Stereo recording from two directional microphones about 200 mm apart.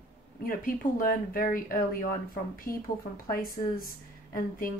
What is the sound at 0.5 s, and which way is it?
Speech, 45° left (ahead or behind).